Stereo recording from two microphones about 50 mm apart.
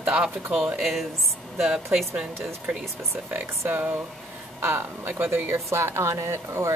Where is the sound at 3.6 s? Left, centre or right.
Right.